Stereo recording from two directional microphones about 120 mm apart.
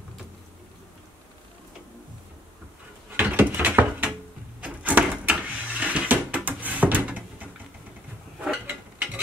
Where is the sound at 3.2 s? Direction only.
15° right (ahead or behind).